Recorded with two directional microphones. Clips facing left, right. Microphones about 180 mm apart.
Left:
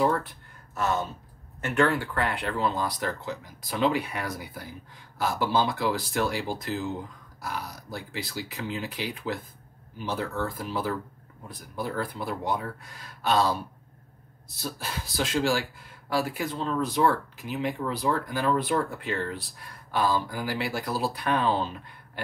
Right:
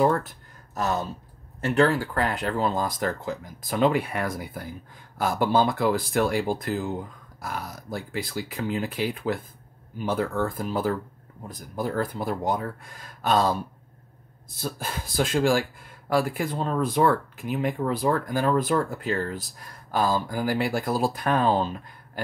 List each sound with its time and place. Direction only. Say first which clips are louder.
0.0 s speech: right 3 dB; 45° right (ahead or behind)
14.6 s speech: right 3 dB; 50° right (ahead or behind)